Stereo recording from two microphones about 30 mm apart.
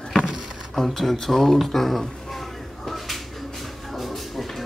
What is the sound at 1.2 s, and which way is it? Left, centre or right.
Speech, centre.